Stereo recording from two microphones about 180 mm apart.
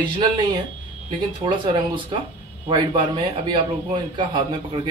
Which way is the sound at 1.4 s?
25° right (ahead or behind).